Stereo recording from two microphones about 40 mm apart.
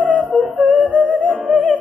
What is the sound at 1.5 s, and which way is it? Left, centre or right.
Music, centre.